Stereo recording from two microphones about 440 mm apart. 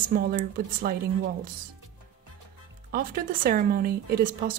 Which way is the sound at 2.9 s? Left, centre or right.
Centre.